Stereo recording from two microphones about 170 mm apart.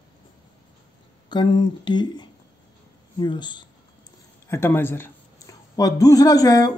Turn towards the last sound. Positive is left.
turn(degrees=20)  # may be behind; listen again after turning